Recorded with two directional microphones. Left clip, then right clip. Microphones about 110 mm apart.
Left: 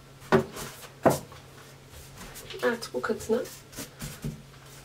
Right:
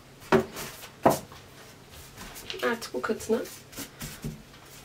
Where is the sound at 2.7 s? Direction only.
5° right (ahead or behind).